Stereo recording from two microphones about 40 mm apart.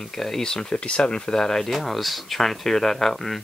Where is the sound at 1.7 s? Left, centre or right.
Centre.